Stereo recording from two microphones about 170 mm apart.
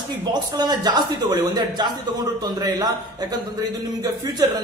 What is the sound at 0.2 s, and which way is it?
Speech, 25° right (ahead or behind).